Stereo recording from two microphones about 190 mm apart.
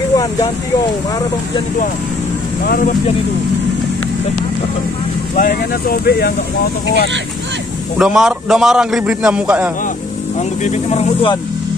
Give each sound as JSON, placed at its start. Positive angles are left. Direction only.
{"t": 2.6, "sound": "speech", "side_deg": 50}
{"t": 5.3, "sound": "speech", "side_deg": 50}
{"t": 8.0, "sound": "a man's voice", "side_deg": 0}
{"t": 10.6, "sound": "speech", "side_deg": 35}